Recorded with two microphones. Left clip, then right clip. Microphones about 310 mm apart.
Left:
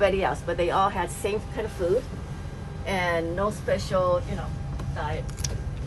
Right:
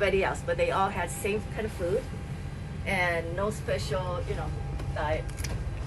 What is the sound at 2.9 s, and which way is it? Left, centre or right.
Speech, left.